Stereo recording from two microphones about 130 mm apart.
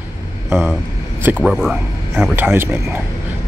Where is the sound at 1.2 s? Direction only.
10° right (ahead or behind).